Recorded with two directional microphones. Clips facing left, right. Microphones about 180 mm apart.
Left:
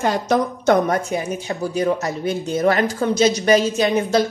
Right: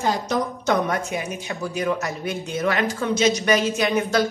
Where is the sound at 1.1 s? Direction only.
35° left (ahead or behind).